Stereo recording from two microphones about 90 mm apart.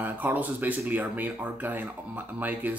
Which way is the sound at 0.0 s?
20° right (ahead or behind).